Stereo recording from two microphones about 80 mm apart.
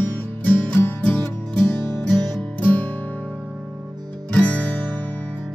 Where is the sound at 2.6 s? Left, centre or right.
Left.